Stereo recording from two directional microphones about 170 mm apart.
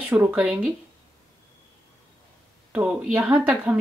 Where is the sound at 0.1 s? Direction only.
10° right (ahead or behind).